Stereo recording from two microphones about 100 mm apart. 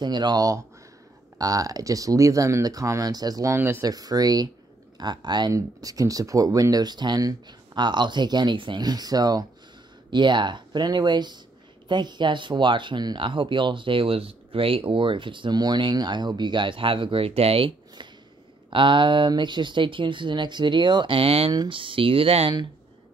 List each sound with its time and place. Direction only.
0.0 s speech: 45° right (ahead or behind)
3.5 s speech: 20° right (ahead or behind)
3.8 s speech: 40° right (ahead or behind)
10.1 s speech: 50° right (ahead or behind)
21.2 s speech: 75° right (ahead or behind)
21.6 s speech: 60° right (ahead or behind); by 22.5 s 80° right